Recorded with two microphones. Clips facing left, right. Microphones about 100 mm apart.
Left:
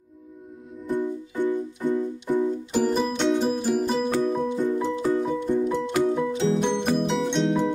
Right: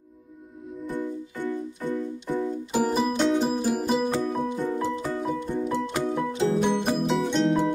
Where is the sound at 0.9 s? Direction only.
15° left (ahead or behind).